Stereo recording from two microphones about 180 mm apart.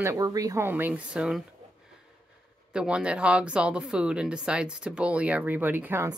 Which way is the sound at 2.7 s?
5° right (ahead or behind).